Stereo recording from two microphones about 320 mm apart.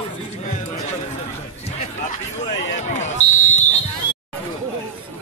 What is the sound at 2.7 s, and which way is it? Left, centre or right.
Speech, left.